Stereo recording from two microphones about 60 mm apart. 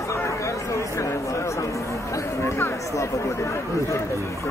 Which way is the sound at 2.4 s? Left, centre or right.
Left.